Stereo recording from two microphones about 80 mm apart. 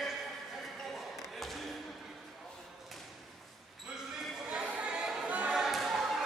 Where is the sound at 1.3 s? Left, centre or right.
Centre.